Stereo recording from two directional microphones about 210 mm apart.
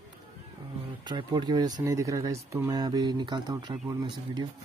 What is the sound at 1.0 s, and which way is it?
Speech, 20° right (ahead or behind).